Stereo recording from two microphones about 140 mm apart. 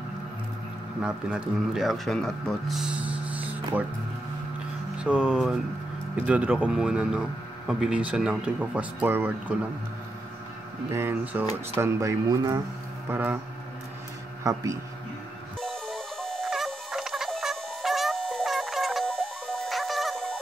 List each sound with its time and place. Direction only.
1.0 s speech: 5° right (ahead or behind)
4.9 s a sound: 5° right (ahead or behind)
6.1 s speech: 10° right (ahead or behind)
10.9 s speech: 15° right (ahead or behind)
13.1 s speech: 15° right (ahead or behind)
14.4 s a man's voice: 25° right (ahead or behind)
15.6 s music: 5° left (ahead or behind)